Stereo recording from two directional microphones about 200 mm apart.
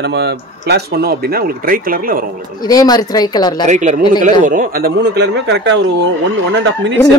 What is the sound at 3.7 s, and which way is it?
A man's voice, 40° right (ahead or behind).